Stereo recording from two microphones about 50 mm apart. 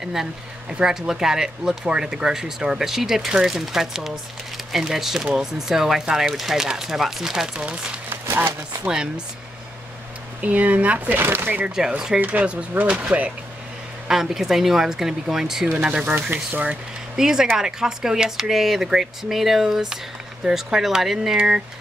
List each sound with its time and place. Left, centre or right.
0.0 s speech: centre
8.1 s a sound: right
8.8 s speech: centre
10.4 s speech: right
11.1 s speech: right
11.6 s speech: centre
12.2 s speech: right
14.0 s speech: centre
16.2 s speech: right
17.2 s speech: centre
21.4 s speech: right